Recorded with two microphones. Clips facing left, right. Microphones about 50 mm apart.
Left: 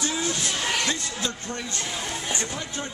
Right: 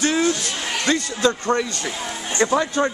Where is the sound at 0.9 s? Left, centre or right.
Right.